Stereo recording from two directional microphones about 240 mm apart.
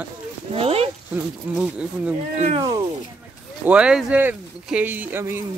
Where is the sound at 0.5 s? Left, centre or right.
Right.